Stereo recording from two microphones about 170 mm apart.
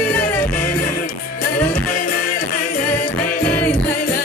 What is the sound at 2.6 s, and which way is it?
Music, 50° left (ahead or behind).